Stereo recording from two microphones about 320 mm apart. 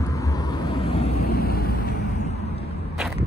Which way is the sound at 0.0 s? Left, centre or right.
Centre.